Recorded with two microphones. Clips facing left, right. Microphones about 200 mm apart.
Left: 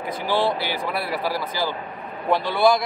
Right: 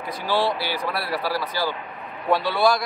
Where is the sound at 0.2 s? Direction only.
15° left (ahead or behind).